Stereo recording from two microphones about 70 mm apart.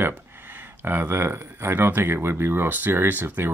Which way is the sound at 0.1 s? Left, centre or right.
Right.